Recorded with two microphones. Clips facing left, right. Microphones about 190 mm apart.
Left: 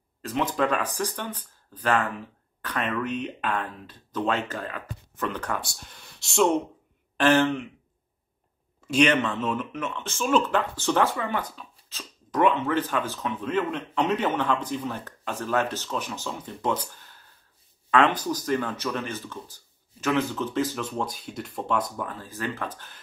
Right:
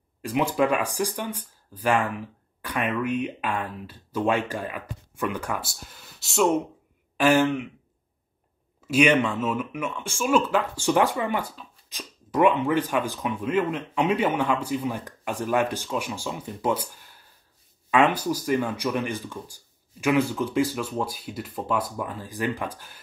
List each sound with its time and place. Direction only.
0.2 s speech: 10° right (ahead or behind)
8.8 s speech: 10° right (ahead or behind)